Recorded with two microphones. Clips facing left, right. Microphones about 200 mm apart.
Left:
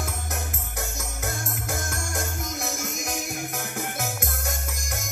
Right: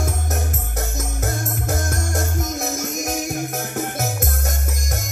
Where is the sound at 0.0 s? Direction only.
45° right (ahead or behind).